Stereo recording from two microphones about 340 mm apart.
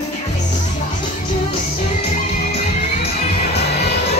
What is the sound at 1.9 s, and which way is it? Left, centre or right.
Music, centre.